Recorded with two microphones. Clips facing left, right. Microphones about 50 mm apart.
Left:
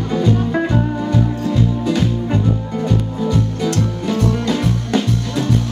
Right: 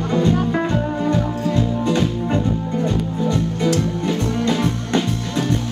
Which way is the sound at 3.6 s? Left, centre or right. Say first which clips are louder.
Even; centre.